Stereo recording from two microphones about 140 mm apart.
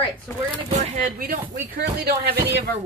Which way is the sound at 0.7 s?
60° right (ahead or behind).